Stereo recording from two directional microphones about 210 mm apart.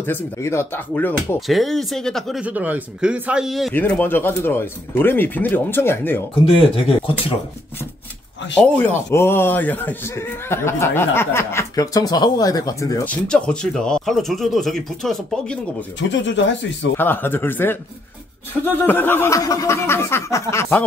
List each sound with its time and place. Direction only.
0.0 s a man's voice: 10° left (ahead or behind)
8.5 s a man's voice: 10° left (ahead or behind)
16.0 s speech: 60° left (ahead or behind)
16.9 s a man's voice: 10° left (ahead or behind)